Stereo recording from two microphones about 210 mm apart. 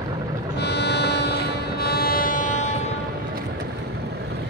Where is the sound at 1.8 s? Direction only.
45° left (ahead or behind).